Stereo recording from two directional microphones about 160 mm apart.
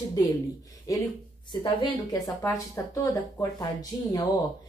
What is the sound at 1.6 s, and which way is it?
Speech, 30° left (ahead or behind).